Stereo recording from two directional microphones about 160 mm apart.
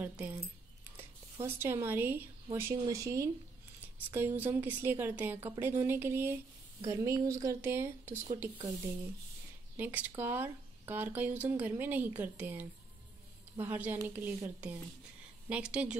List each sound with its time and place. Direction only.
0.0 s speech: 10° right (ahead or behind)
9.8 s speech: 10° right (ahead or behind)